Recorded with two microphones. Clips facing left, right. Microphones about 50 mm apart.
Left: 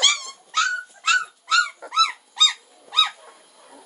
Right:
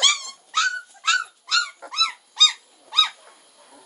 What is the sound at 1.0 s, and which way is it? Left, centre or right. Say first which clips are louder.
Dog: left 1 dB; centre.